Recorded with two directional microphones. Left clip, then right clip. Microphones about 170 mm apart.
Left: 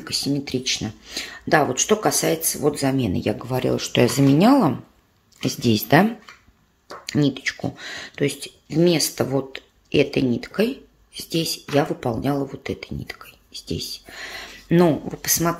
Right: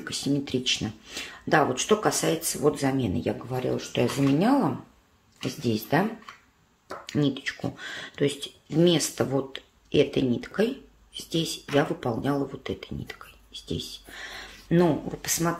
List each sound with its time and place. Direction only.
0.0 s speech: 20° left (ahead or behind); by 6.0 s 45° left (ahead or behind)
7.1 s speech: 30° left (ahead or behind)